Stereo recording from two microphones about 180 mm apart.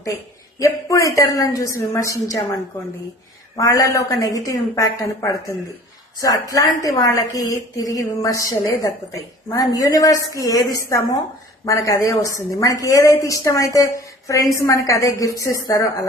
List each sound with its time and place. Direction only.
0.0 s a woman's voice: 15° left (ahead or behind)